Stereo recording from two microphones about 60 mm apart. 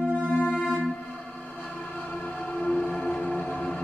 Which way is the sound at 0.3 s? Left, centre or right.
Left.